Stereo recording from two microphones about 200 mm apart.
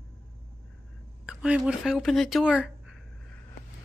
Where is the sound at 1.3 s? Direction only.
5° right (ahead or behind).